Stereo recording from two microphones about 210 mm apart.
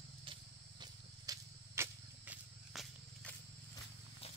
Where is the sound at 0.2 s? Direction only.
20° right (ahead or behind); by 3.3 s centre (ahead or behind).